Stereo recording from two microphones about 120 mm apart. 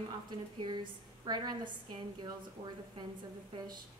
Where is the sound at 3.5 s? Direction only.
45° right (ahead or behind).